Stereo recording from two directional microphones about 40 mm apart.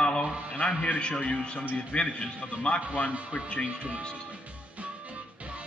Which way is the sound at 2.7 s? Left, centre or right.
Left.